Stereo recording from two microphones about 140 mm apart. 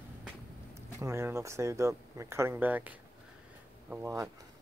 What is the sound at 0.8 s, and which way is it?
Speech, 20° right (ahead or behind).